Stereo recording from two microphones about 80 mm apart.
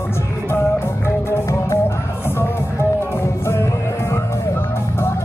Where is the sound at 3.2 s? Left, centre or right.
Left.